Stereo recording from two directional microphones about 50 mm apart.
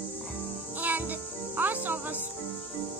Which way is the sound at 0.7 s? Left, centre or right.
Right.